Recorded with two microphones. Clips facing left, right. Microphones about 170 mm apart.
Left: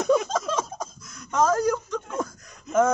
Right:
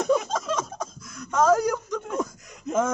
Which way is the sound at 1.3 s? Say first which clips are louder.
Right 1 dB; 5° right (ahead or behind).